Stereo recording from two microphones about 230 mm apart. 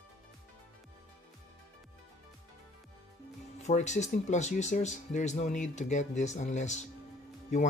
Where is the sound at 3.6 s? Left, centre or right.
Left.